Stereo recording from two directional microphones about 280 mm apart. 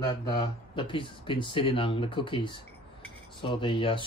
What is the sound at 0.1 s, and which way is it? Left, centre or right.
Speech, centre.